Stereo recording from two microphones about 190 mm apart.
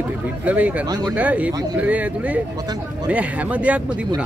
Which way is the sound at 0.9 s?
20° right (ahead or behind).